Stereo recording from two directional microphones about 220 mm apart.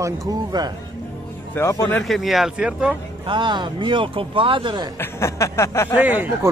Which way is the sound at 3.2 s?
20° right (ahead or behind).